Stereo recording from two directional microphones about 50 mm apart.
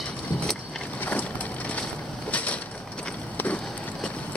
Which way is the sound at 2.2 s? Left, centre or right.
Left.